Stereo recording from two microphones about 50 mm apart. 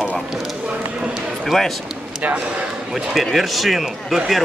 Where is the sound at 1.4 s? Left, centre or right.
Centre.